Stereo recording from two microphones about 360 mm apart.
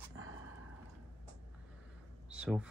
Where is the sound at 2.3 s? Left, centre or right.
Centre.